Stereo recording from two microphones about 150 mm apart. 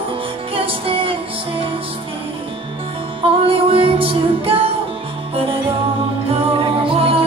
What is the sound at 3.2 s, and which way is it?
Music, 40° right (ahead or behind).